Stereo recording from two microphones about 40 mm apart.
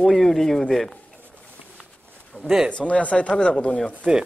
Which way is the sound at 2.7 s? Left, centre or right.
Left.